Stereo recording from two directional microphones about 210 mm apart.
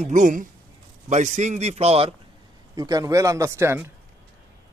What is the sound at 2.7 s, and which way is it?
A man's voice, 15° right (ahead or behind).